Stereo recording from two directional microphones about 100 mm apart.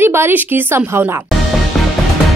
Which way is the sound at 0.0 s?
20° right (ahead or behind).